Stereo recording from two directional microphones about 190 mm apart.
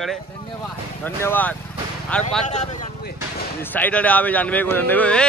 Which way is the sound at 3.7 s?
10° left (ahead or behind).